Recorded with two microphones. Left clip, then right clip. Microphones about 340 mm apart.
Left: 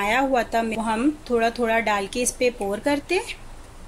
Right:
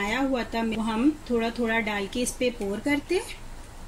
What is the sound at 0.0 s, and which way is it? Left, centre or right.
Speech, left.